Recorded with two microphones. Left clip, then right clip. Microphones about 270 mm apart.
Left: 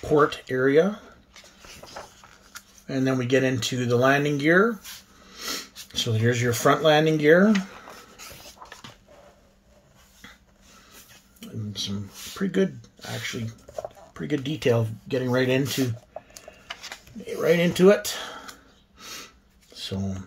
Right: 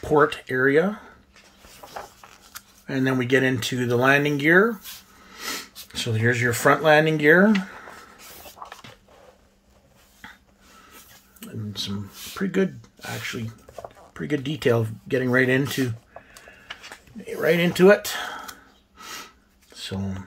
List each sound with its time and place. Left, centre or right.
0.0 s speech: centre
2.5 s a sound: right
2.9 s speech: centre
12.4 s speech: centre
17.2 s speech: centre
18.9 s snort: centre
19.7 s speech: centre